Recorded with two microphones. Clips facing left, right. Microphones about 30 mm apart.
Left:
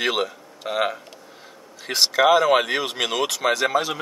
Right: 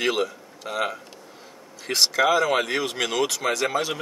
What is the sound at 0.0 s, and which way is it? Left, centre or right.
Speech, centre.